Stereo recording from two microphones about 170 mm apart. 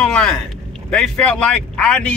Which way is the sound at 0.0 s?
5° left (ahead or behind).